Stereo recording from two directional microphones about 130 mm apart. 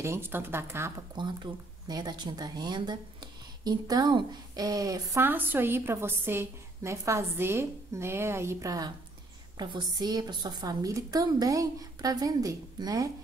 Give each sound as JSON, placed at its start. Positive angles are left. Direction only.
{"t": 0.0, "sound": "speech", "side_deg": -20}
{"t": 1.1, "sound": "speech", "side_deg": -35}